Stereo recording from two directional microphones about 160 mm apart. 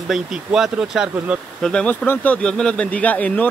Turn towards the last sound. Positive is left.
turn(degrees=10)  # may be behind; listen again after turning